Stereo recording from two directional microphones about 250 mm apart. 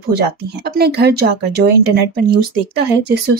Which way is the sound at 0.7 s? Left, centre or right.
Right.